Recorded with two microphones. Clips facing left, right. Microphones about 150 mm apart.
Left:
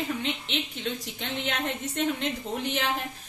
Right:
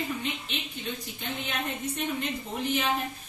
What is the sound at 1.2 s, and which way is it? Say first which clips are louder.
A woman's voice: left 2 dB; 85° left.